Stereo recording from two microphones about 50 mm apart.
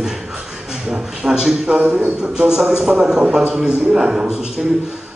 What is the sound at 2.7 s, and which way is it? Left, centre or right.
A man's voice, centre.